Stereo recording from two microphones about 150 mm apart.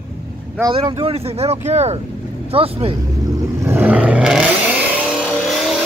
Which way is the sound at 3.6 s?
10° right (ahead or behind).